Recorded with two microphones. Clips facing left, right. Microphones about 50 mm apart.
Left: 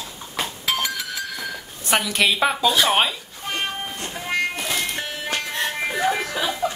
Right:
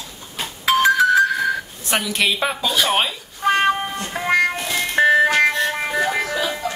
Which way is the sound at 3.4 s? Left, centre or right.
Right.